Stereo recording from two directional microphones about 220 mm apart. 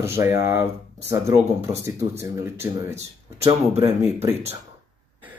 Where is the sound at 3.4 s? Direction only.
25° right (ahead or behind).